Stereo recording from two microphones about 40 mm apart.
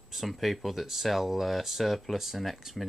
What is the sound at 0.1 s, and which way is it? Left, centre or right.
Speech, centre.